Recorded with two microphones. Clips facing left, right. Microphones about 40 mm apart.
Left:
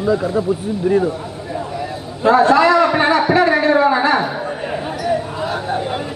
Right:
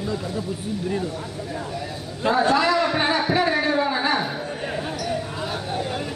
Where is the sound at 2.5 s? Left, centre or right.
Centre.